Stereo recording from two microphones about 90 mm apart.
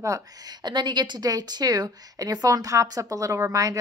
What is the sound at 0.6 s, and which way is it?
Speech, 55° right (ahead or behind).